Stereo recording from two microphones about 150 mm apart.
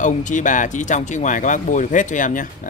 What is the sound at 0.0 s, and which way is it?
Speech, 55° left (ahead or behind).